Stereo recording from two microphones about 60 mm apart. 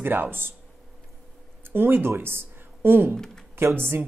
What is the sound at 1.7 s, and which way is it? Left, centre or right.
A woman's voice, right.